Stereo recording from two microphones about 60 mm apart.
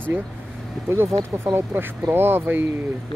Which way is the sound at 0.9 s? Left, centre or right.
Right.